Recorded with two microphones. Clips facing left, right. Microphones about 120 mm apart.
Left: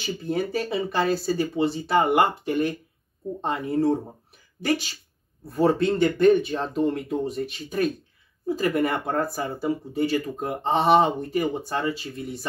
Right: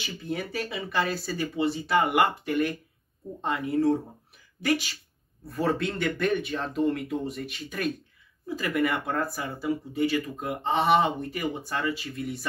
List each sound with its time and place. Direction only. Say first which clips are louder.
0.0 s speech: left 6 dB; 35° left (ahead or behind)